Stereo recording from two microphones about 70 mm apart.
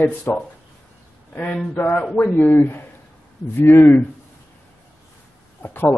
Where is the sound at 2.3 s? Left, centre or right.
Left.